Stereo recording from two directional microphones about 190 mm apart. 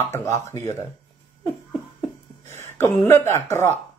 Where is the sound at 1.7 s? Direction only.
10° left (ahead or behind).